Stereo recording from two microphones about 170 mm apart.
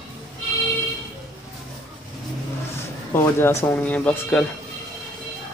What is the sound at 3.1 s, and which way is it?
Speech, 15° left (ahead or behind).